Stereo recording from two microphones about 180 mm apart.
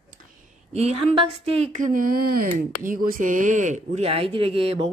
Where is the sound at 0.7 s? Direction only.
35° right (ahead or behind).